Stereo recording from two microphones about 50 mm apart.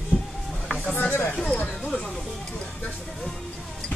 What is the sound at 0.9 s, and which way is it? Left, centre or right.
Speech, left.